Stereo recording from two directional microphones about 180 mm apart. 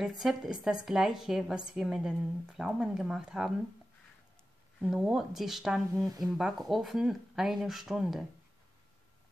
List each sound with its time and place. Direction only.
0.0 s speech: centre (ahead or behind)
4.7 s speech: 5° right (ahead or behind)
6.0 s speech: 20° right (ahead or behind)
6.3 s speech: centre (ahead or behind)